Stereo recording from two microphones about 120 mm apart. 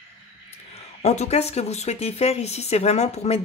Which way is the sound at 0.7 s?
65° left (ahead or behind).